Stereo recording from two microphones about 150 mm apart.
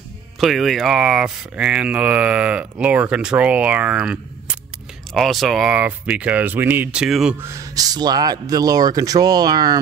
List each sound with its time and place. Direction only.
0.4 s speech: centre (ahead or behind)
7.3 s speech: 20° right (ahead or behind)